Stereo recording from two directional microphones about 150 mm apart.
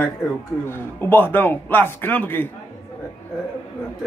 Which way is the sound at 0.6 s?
15° left (ahead or behind).